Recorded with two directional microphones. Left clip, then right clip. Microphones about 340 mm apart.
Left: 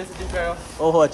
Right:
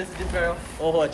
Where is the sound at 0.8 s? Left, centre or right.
Centre.